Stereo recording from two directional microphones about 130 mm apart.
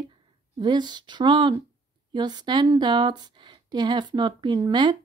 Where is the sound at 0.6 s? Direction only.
35° right (ahead or behind).